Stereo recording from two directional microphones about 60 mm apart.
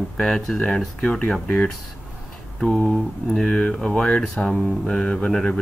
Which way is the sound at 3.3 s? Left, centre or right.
Centre.